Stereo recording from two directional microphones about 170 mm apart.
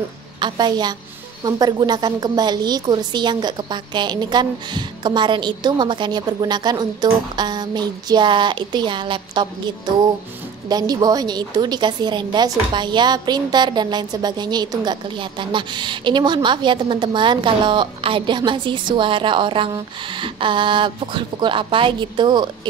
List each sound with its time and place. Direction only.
0.4 s a woman's voice: 25° right (ahead or behind)